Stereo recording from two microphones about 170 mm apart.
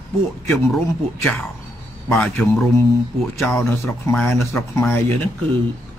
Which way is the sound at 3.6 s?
15° left (ahead or behind).